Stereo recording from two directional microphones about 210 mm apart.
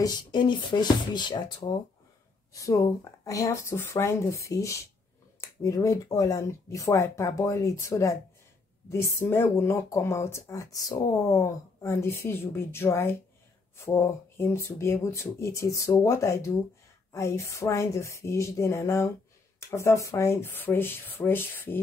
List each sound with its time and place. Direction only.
0.0 s speech: 20° left (ahead or behind)